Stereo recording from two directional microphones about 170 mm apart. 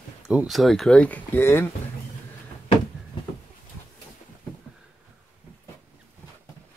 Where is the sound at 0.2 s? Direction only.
5° right (ahead or behind); by 1.7 s 15° left (ahead or behind).